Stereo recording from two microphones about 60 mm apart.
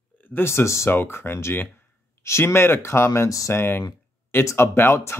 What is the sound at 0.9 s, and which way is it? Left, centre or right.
Speech, left.